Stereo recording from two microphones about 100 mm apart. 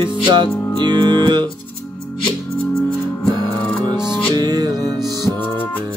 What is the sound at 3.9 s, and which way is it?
Music, 5° right (ahead or behind).